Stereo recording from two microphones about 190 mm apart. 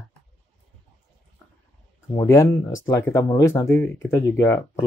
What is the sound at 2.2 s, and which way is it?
Speech, 15° left (ahead or behind).